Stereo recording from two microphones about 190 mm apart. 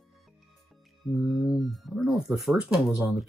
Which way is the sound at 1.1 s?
Centre (ahead or behind).